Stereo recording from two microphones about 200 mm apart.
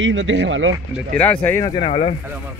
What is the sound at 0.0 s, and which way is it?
Speech, 70° right (ahead or behind).